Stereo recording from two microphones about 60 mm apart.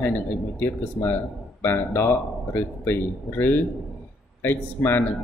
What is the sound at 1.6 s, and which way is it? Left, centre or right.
Speech, left.